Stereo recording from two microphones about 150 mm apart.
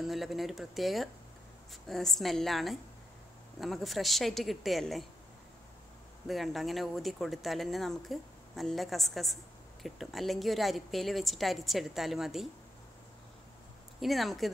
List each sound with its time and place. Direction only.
0.0 s speech: centre (ahead or behind)
6.2 s speech: centre (ahead or behind)
13.9 s speech: centre (ahead or behind)